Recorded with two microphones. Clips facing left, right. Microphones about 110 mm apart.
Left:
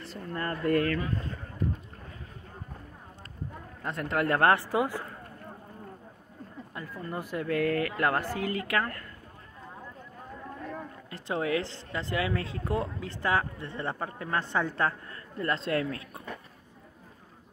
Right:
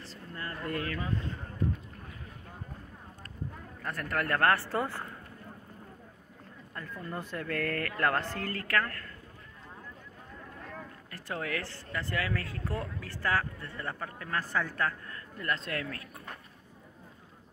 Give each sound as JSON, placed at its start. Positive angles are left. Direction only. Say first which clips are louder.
{"t": 0.0, "sound": "a sound", "louder": "left 7 dB", "side_deg": 60}
{"t": 3.8, "sound": "speech", "louder": "left 4 dB", "side_deg": 20}
{"t": 6.7, "sound": "speech", "louder": "left 2 dB", "side_deg": 5}
{"t": 10.7, "sound": "speech", "louder": "left 5 dB", "side_deg": 20}